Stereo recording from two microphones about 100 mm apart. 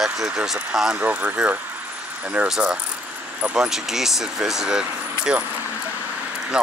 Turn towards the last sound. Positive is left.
turn(degrees=-5)  # may be behind; listen again after turning